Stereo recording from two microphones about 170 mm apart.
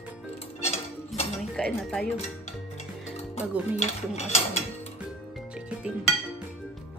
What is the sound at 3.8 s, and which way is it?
Mechanisms, 40° left (ahead or behind).